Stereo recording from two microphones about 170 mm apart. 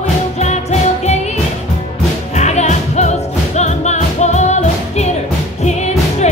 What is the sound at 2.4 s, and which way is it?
Music, 40° left (ahead or behind).